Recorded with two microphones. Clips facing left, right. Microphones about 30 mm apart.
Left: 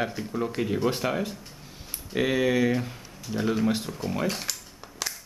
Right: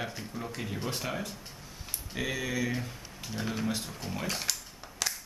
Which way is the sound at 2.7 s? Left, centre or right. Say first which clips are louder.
Left 7 dB; centre.